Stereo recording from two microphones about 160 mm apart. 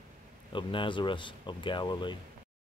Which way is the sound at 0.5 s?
30° left (ahead or behind).